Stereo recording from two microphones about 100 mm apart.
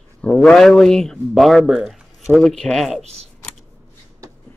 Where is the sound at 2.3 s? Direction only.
5° left (ahead or behind).